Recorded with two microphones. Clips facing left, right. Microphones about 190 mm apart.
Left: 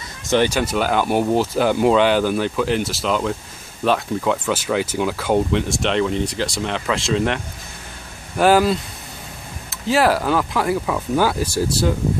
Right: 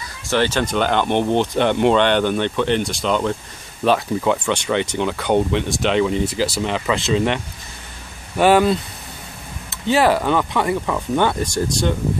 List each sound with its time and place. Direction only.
0.3 s speech: 15° left (ahead or behind)
8.4 s speech: centre (ahead or behind)